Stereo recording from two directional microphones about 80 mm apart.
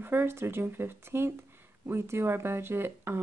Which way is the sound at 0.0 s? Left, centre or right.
Right.